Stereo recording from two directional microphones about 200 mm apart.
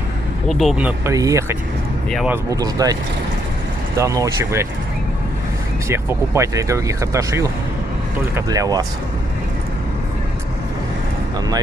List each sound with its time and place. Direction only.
0.5 s speech: centre (ahead or behind)
5.9 s speech: 15° right (ahead or behind)